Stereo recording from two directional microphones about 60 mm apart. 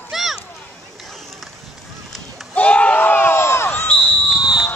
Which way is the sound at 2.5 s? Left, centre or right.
Left.